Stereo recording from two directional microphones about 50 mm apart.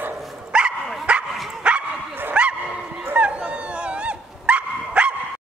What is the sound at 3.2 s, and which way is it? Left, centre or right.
Dog, right.